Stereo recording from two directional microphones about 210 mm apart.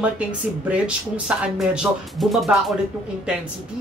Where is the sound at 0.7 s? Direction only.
5° right (ahead or behind).